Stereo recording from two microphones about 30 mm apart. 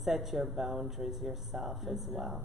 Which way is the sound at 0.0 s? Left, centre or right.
Centre.